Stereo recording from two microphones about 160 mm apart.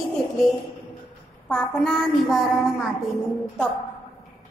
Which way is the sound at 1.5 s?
5° left (ahead or behind).